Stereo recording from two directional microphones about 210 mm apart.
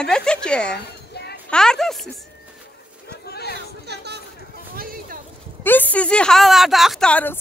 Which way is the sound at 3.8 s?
50° right (ahead or behind).